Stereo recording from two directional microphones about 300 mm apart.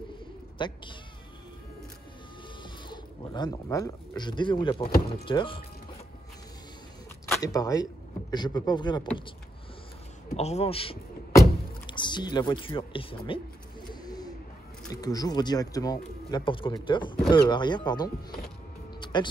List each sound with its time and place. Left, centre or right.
0.6 s speech: centre
2.6 s speech: centre
7.2 s speech: centre
10.3 s speech: left
14.0 s bird: centre
14.9 s speech: centre